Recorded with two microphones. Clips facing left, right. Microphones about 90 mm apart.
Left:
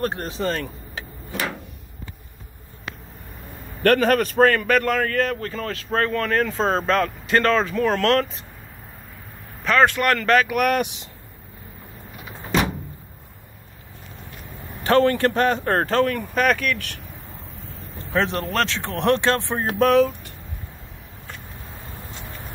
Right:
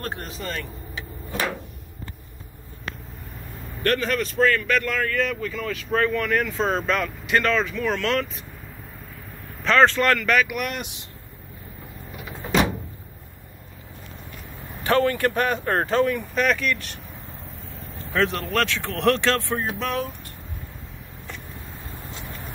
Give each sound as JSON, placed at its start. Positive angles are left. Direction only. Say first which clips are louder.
{"t": 0.4, "sound": "speech", "louder": "left 9 dB", "side_deg": 50}
{"t": 3.8, "sound": "a man's voice", "louder": "left 6 dB", "side_deg": 60}
{"t": 9.7, "sound": "speech", "louder": "even", "side_deg": 15}
{"t": 10.1, "sound": "a man's voice", "louder": "left 3 dB", "side_deg": 35}
{"t": 10.5, "sound": "speech", "louder": "left 9 dB", "side_deg": 60}
{"t": 14.9, "sound": "speech", "louder": "left 3 dB", "side_deg": 50}
{"t": 15.1, "sound": "speech", "louder": "left 3 dB", "side_deg": 30}
{"t": 18.1, "sound": "speech", "louder": "left 1 dB", "side_deg": 25}
{"t": 19.6, "sound": "speech", "louder": "left 10 dB", "side_deg": 70}